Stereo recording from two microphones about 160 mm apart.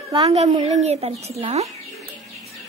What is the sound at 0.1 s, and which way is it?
Speech, 40° right (ahead or behind).